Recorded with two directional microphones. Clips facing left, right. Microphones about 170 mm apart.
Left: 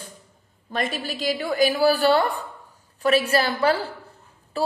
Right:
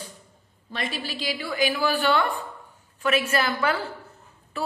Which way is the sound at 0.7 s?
45° left (ahead or behind).